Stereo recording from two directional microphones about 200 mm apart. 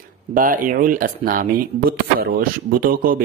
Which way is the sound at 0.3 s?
45° right (ahead or behind).